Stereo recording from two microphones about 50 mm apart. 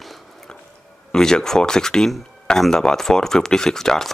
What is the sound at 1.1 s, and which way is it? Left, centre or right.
Speech, centre.